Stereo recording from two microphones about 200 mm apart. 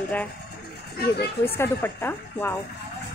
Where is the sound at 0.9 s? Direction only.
55° left (ahead or behind).